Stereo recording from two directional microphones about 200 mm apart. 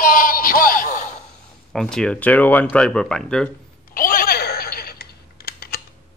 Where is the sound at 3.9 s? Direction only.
45° left (ahead or behind).